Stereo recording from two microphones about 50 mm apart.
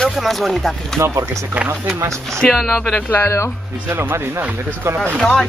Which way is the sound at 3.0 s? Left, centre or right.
Left.